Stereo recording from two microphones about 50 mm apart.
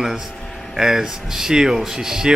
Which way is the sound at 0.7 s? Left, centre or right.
Centre.